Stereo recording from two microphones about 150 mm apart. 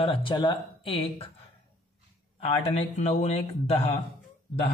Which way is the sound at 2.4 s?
45° left (ahead or behind).